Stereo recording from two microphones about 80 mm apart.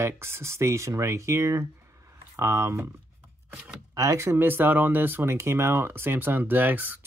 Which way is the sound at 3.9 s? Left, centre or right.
Right.